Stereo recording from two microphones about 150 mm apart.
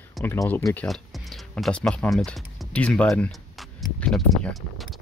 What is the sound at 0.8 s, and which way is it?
Speech, centre (ahead or behind).